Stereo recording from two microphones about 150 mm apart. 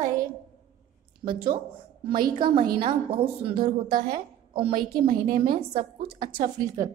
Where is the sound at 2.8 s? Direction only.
35° right (ahead or behind).